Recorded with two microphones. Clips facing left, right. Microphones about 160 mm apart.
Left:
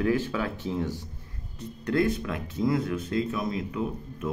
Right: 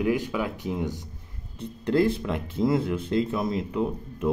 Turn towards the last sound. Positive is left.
turn(degrees=-30)  # may be behind; listen again after turning